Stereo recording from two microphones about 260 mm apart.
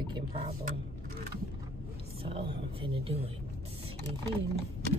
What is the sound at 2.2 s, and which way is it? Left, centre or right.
Speech, right.